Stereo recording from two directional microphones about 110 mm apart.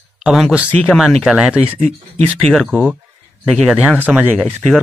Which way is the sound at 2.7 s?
15° right (ahead or behind).